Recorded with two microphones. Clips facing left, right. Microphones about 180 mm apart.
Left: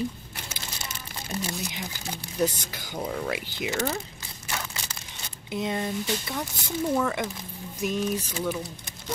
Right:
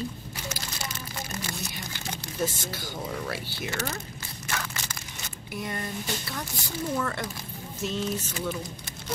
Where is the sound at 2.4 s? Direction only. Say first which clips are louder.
Left 3 dB; 15° left (ahead or behind).